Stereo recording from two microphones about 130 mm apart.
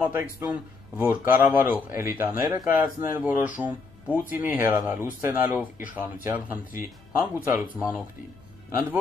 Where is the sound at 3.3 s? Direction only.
10° right (ahead or behind).